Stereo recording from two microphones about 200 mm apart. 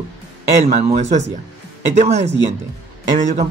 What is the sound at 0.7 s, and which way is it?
Speech, 35° right (ahead or behind).